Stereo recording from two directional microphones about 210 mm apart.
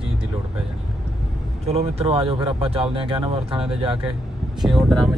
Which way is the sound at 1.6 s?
30° right (ahead or behind).